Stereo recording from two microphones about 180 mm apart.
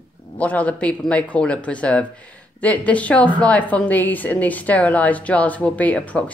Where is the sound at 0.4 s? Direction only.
10° left (ahead or behind).